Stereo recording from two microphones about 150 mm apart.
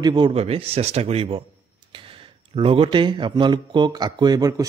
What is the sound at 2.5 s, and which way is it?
Speech, 35° right (ahead or behind).